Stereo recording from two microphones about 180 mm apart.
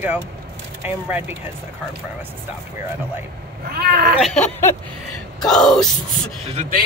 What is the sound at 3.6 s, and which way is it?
Speech, 55° right (ahead or behind).